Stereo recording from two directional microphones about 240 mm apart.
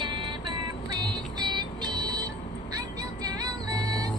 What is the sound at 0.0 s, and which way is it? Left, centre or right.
Music, centre.